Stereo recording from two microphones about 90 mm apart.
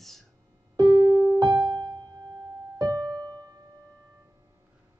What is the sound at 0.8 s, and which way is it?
Music, 55° right (ahead or behind).